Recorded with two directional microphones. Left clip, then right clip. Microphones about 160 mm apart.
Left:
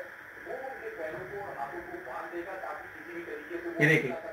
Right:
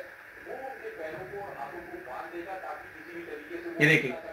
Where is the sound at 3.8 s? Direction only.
40° right (ahead or behind).